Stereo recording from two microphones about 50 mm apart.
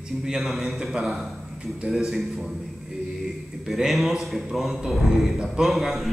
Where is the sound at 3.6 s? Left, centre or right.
Centre.